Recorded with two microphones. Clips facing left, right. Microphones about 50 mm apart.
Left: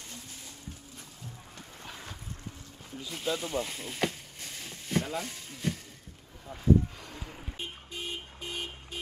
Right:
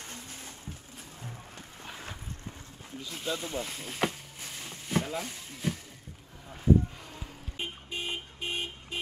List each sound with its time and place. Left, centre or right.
1.8 s vehicle: centre
3.0 s boat: centre
6.5 s a sound: centre
7.5 s vehicle: right